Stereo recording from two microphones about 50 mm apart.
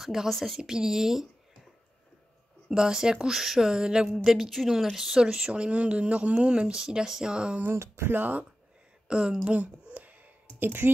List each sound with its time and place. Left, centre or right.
0.0 s a woman's voice: centre
0.3 s a woman's voice: centre
0.6 s speech: centre
2.7 s speech: centre
7.6 s speech: right
8.1 s speech: right
9.0 s speech: centre
10.6 s speech: right